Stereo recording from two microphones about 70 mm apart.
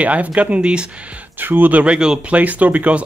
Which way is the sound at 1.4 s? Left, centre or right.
Right.